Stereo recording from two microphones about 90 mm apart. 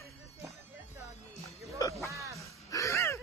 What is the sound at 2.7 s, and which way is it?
Gasp, 35° left (ahead or behind).